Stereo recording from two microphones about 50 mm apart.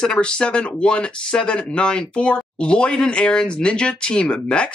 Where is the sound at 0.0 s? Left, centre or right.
Centre.